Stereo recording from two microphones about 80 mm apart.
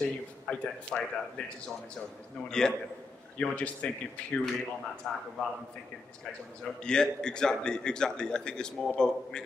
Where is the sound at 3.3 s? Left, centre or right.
Centre.